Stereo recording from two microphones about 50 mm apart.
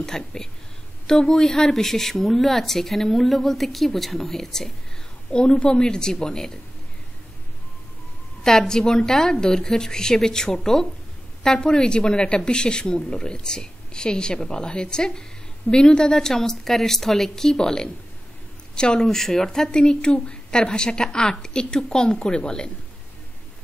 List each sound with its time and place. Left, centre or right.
0.0 s a woman's voice: centre
8.5 s speech: centre